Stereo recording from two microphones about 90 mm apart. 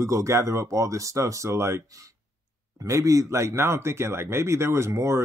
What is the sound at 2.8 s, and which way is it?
Speech, 35° right (ahead or behind).